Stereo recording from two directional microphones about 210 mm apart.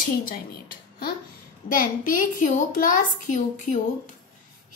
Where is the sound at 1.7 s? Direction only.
40° left (ahead or behind).